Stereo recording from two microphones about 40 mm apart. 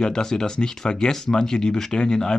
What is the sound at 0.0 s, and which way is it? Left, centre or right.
Speech, centre.